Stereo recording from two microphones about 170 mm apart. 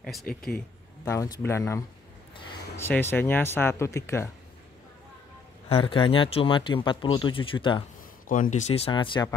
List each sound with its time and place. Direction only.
0.0 s speech: centre (ahead or behind)
1.0 s speech: 20° left (ahead or behind)
2.9 s speech: 10° left (ahead or behind)
5.7 s speech: 30° left (ahead or behind)
8.3 s speech: 50° left (ahead or behind); by 9.3 s 30° left (ahead or behind)